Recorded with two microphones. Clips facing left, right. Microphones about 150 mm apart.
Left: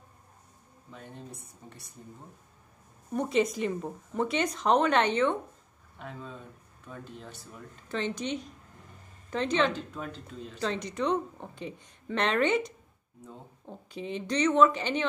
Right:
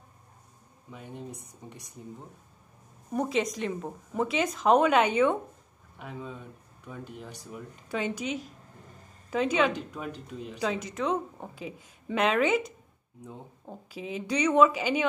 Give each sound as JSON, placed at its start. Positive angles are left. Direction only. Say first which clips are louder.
{"t": 0.9, "sound": "a woman's voice", "louder": "right 4 dB", "side_deg": -15}
{"t": 3.2, "sound": "a woman's voice", "louder": "left 1 dB", "side_deg": 0}